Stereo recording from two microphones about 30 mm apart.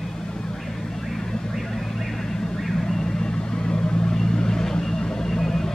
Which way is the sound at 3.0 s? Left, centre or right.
Left.